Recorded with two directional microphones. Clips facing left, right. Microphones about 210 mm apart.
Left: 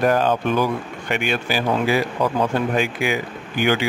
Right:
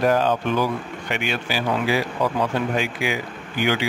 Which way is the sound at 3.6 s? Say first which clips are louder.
Left 2 dB; 50° left (ahead or behind).